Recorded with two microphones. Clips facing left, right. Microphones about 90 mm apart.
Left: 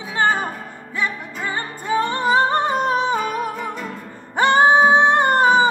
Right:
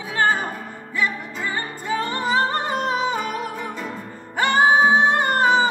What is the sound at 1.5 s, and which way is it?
Music, 25° left (ahead or behind).